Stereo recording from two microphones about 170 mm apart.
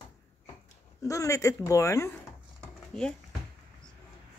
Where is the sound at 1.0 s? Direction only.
20° left (ahead or behind).